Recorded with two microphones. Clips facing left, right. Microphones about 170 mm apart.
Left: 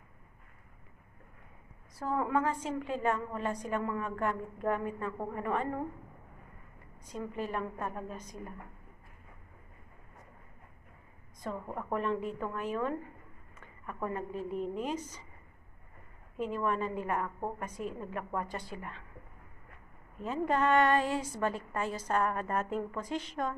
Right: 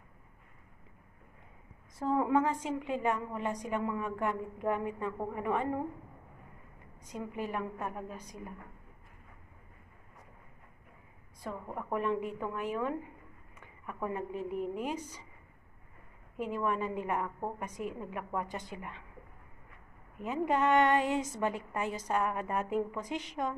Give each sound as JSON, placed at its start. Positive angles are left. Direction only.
{"t": 2.0, "sound": "a woman's voice", "side_deg": -20}
{"t": 7.1, "sound": "a woman's voice", "side_deg": -15}
{"t": 11.6, "sound": "a woman's voice", "side_deg": -10}
{"t": 16.3, "sound": "a woman's voice", "side_deg": -15}
{"t": 20.2, "sound": "a woman's voice", "side_deg": -15}